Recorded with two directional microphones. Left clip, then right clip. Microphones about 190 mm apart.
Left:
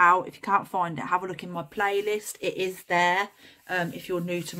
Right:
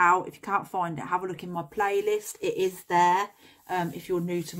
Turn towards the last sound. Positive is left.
turn(degrees=15)  # may be behind; listen again after turning